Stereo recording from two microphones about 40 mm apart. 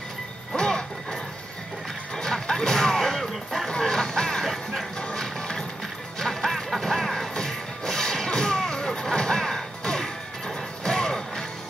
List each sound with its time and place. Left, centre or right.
0.6 s music: centre
2.1 s a sound: centre
3.6 s music: centre